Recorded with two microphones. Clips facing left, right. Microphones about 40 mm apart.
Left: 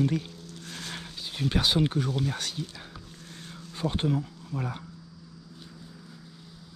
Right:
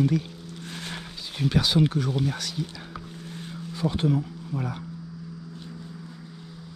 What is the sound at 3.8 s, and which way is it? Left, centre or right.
Speech, centre.